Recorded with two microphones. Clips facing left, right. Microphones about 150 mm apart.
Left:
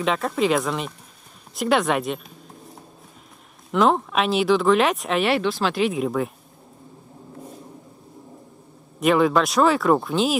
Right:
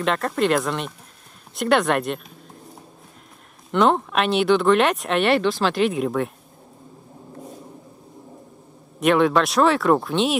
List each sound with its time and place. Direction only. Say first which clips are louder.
0.0 s speech: even; centre (ahead or behind)
1.5 s a sound: right 1 dB; centre (ahead or behind)
3.7 s speech: right 1 dB; centre (ahead or behind)
9.0 s speech: right 1 dB; centre (ahead or behind)